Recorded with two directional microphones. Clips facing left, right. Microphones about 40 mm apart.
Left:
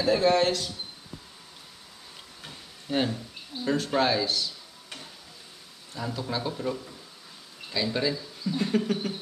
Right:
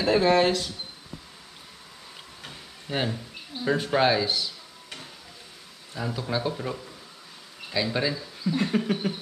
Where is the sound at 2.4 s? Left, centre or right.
Centre.